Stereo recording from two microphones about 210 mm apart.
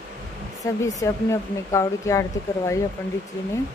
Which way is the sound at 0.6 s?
15° left (ahead or behind).